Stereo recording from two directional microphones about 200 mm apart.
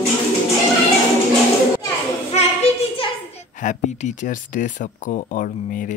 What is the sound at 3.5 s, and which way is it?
Speech, 40° left (ahead or behind).